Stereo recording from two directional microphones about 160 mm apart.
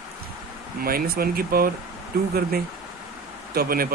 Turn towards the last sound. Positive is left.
turn(degrees=-70)  # may be behind; listen again after turning